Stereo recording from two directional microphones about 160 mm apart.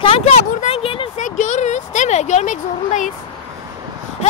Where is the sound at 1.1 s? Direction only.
50° left (ahead or behind).